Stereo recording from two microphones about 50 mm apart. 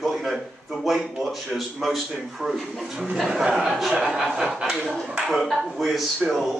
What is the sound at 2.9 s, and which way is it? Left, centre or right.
A man's voice, centre.